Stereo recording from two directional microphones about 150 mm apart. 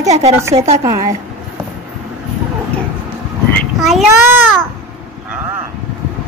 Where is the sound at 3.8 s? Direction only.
Centre (ahead or behind).